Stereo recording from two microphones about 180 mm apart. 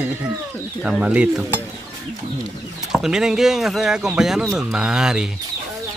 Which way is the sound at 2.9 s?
5° right (ahead or behind).